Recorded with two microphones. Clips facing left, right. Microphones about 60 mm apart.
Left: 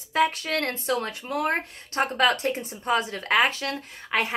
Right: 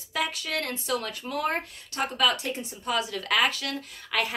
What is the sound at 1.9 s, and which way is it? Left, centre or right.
A woman's voice, left.